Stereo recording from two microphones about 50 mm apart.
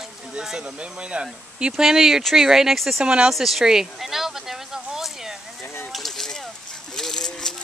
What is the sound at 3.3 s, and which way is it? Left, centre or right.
Speech, centre.